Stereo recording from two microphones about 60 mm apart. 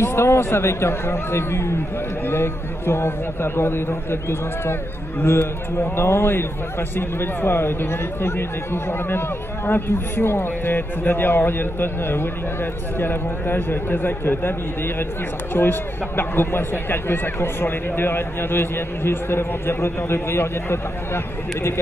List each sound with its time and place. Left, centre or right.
0.0 s a man's voice: left
9.7 s speech: left
15.5 s speech: left